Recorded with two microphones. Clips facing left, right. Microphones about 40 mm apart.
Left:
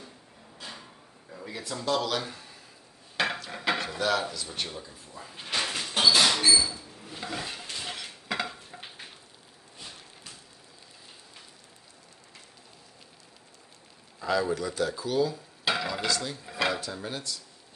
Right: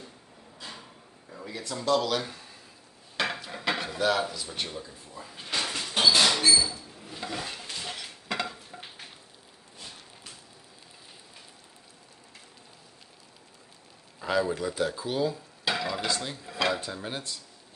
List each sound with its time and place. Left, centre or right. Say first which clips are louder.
0.6 s a sound: even; centre
1.4 s speech: right 1 dB; centre
3.4 s cutlery: left 1 dB; centre
3.7 s speech: right 2 dB; centre
5.4 s door: left 1 dB; centre
5.7 s a sound: even; centre
14.2 s speech: even; centre
15.6 s stir: left 1 dB; centre
16.1 s speech: left 1 dB; right
16.4 s speech: right 1 dB; centre
16.7 s speech: right 1 dB; centre